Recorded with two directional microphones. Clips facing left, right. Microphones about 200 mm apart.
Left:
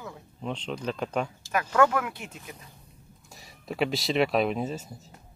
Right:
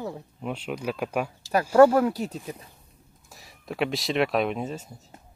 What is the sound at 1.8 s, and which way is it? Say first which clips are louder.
Speech: right 8 dB; 35° right (ahead or behind).